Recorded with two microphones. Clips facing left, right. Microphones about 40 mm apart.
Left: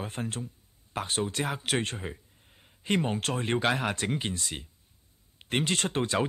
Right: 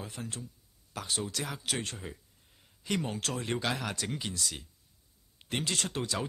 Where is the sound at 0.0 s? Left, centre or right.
Left.